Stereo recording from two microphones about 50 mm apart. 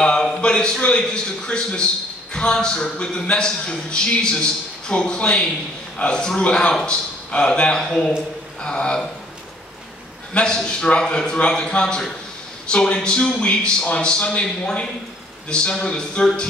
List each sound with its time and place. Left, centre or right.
0.0 s a man's voice: centre
10.3 s a man's voice: centre